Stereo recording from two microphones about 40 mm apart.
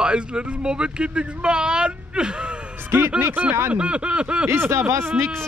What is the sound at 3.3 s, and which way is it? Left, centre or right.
Speech, right.